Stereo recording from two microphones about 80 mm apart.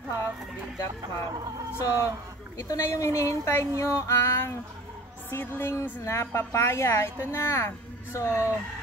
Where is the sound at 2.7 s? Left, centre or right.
Left.